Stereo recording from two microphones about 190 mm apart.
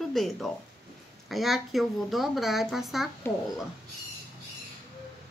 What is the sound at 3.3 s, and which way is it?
Speech, 15° left (ahead or behind).